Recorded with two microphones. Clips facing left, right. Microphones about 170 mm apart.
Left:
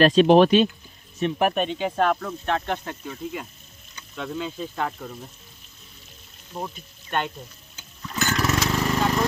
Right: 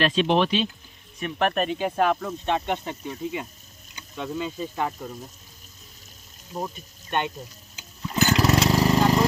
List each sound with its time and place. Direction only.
0.0 s speech: 40° left (ahead or behind)
1.4 s speech: centre (ahead or behind)
6.5 s speech: 15° right (ahead or behind)
8.1 s lawn mower: 25° right (ahead or behind)
8.9 s a sound: 10° right (ahead or behind)